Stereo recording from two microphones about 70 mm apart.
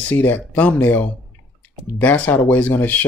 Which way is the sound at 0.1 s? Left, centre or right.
Left.